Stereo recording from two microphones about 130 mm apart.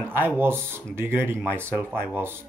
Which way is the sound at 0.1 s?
15° right (ahead or behind).